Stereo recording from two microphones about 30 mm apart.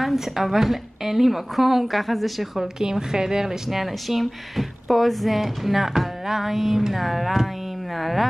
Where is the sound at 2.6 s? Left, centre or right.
Right; by 5.7 s centre.